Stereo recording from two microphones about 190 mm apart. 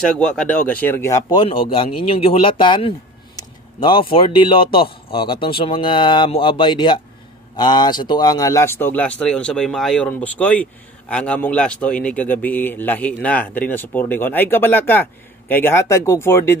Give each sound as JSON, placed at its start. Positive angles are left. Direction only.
{"t": 0.2, "sound": "speech", "side_deg": 5}
{"t": 1.7, "sound": "speech", "side_deg": 30}